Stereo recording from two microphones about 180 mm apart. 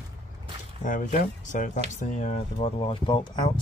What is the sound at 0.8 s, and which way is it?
Speech, 45° left (ahead or behind).